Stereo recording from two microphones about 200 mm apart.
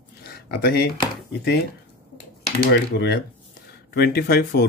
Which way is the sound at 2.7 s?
55° left (ahead or behind).